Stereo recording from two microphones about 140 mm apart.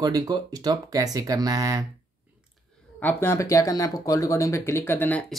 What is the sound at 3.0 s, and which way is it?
Speech, 15° left (ahead or behind).